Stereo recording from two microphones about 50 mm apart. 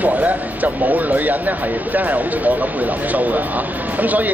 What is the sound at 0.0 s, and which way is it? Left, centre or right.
Speech, right.